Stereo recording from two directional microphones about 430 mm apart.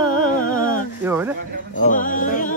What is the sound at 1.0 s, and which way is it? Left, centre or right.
Speech, centre.